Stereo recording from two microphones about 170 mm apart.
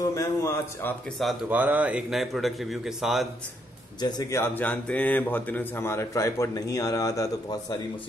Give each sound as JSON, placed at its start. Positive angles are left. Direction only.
{"t": 0.1, "sound": "speech", "side_deg": 20}
{"t": 1.2, "sound": "a man's voice", "side_deg": -10}
{"t": 4.0, "sound": "speech", "side_deg": 20}